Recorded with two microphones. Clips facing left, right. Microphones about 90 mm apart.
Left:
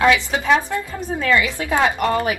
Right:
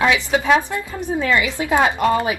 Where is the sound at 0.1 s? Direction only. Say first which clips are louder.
Right 1 dB; 15° right (ahead or behind).